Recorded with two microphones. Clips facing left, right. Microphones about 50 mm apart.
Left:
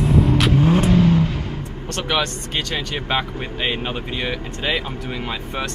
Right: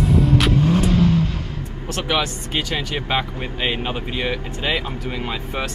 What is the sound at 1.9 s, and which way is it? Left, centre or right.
Speech, centre.